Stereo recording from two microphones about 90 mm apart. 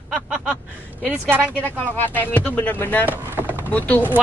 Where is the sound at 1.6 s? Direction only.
20° left (ahead or behind).